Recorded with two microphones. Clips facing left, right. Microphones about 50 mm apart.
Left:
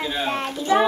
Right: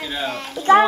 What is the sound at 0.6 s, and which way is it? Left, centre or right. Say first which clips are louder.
Speech: right 6 dB; right.